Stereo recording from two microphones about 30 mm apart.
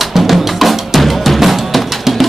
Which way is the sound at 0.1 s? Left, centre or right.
Centre.